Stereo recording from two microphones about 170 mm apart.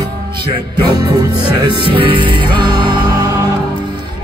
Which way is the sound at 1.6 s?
30° right (ahead or behind).